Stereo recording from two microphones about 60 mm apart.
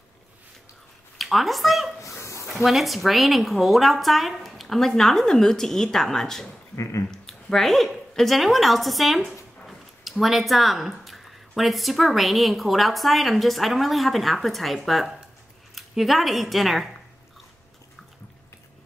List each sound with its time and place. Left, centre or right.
1.1 s speech: centre
2.0 s a sound: left
2.4 s speech: centre
6.7 s speech: left
7.1 s a woman's voice: centre